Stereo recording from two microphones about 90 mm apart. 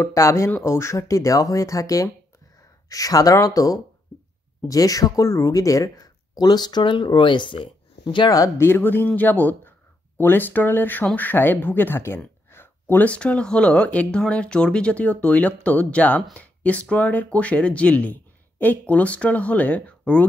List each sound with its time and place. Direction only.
0.0 s speech: 35° left (ahead or behind)
6.4 s speech: 50° left (ahead or behind)
8.5 s speech: 25° left (ahead or behind)